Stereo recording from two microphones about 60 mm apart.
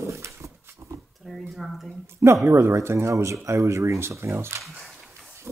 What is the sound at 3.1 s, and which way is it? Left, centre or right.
Speech, right.